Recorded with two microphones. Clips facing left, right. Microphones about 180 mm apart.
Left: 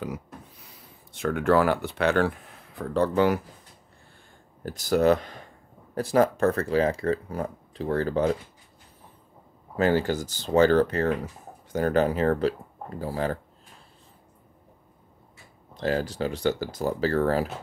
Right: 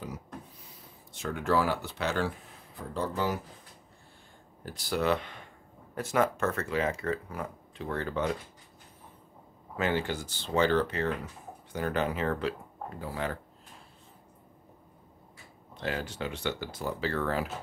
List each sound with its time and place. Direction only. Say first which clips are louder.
1.1 s speech: left 6 dB; 60° left (ahead or behind)
4.6 s speech: left 8 dB; 45° left (ahead or behind)
9.8 s speech: left 7 dB; 40° left (ahead or behind)
15.7 s speech: left 8 dB; 40° left (ahead or behind)